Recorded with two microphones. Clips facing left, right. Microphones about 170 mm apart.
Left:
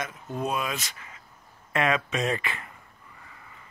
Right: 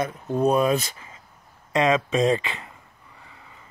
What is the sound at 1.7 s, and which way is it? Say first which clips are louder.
Speech: right 5 dB; 25° right (ahead or behind).